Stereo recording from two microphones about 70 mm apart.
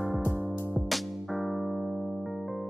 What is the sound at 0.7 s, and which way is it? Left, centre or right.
Music, centre.